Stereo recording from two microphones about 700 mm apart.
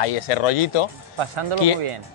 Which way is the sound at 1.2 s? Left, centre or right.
Right.